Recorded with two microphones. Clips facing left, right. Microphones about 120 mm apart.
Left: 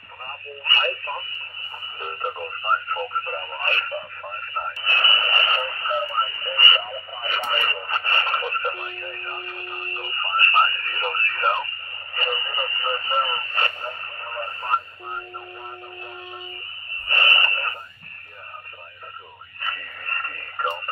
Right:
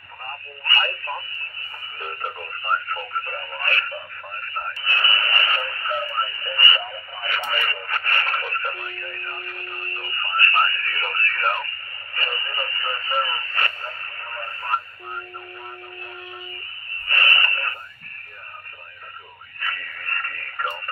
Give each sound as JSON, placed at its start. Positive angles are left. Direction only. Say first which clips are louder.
{"t": 0.7, "sound": "speech", "louder": "even", "side_deg": 20}
{"t": 7.5, "sound": "radio", "louder": "left 1 dB", "side_deg": 20}
{"t": 17.0, "sound": "radio", "louder": "even", "side_deg": 20}
{"t": 19.6, "sound": "radio", "louder": "right 1 dB", "side_deg": 20}